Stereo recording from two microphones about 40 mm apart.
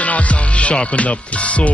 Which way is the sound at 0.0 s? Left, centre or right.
Left.